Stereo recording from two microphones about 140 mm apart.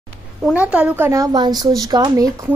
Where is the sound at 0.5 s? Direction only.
10° right (ahead or behind).